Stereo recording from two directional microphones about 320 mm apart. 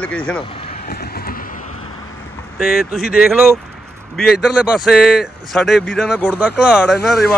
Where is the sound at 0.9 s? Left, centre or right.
Left.